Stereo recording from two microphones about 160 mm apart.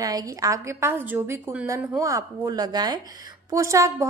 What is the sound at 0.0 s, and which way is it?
A woman's voice, 20° right (ahead or behind).